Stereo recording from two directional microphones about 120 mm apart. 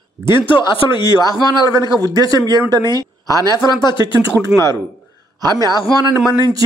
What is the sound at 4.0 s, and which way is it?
A man's voice, 25° right (ahead or behind).